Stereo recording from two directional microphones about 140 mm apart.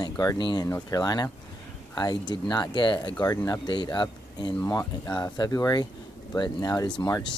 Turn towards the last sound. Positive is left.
turn(degrees=25)  # may be behind; listen again after turning